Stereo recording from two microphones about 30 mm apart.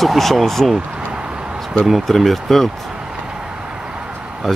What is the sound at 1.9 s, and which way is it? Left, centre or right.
Speech, centre.